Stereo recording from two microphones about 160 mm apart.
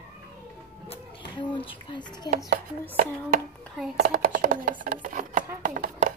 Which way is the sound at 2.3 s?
55° right (ahead or behind).